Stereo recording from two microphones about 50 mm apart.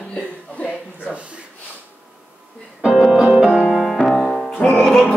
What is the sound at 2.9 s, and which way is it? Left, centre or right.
Music, centre.